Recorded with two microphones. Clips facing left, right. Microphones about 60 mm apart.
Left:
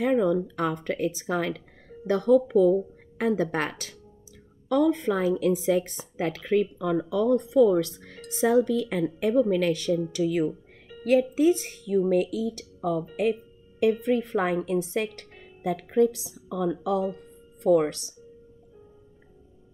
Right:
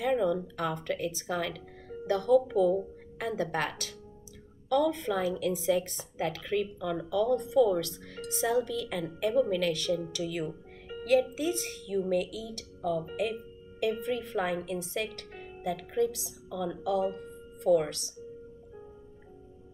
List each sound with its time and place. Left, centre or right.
0.0 s speech: left